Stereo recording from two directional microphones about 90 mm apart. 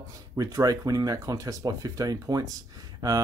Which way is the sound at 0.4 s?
40° right (ahead or behind).